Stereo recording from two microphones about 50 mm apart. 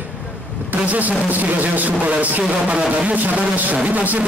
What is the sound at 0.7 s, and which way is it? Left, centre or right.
A man's voice, right.